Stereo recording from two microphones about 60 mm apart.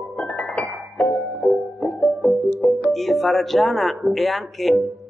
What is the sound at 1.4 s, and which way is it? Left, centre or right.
Music, centre.